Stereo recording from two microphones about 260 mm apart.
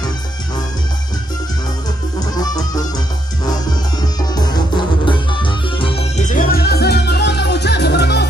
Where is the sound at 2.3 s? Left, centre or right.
Centre.